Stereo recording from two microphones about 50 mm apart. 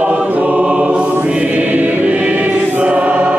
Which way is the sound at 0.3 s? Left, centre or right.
Right.